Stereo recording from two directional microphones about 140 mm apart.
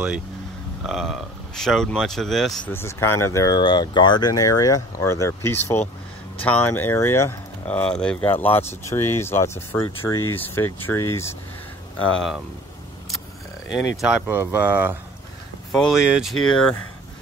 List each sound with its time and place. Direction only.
0.8 s speech: centre (ahead or behind)
2.7 s speech: 15° left (ahead or behind)
12.0 s speech: 5° left (ahead or behind)
13.7 s speech: 5° right (ahead or behind)
15.7 s speech: centre (ahead or behind)